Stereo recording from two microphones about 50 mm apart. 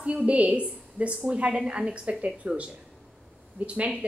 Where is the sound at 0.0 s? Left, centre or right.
Right.